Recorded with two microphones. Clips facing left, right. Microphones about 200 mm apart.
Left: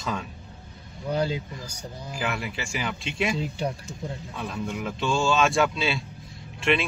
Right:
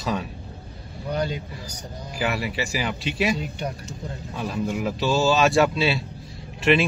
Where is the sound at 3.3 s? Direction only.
30° left (ahead or behind).